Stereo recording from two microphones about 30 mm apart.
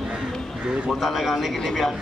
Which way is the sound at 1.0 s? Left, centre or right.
Centre.